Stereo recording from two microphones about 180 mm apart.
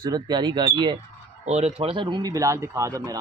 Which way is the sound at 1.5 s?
35° right (ahead or behind).